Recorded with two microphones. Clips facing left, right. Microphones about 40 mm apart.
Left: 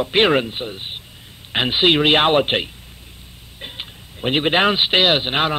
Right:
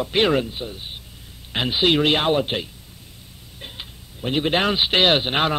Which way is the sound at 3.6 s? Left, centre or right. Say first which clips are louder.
Left 4 dB; left.